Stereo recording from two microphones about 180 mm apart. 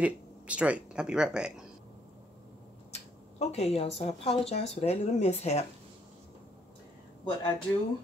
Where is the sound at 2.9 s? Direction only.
35° left (ahead or behind).